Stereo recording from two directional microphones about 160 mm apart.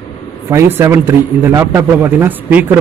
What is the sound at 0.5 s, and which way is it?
A man's voice, 15° right (ahead or behind).